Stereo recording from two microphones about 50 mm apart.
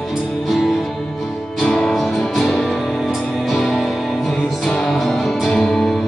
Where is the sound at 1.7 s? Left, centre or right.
Centre.